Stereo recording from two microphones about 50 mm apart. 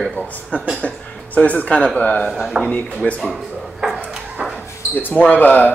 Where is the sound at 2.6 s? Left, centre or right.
Right.